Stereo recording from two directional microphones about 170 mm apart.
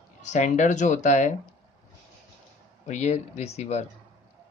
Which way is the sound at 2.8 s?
40° left (ahead or behind).